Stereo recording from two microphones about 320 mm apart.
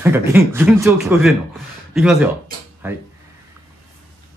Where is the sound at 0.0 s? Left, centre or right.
Centre.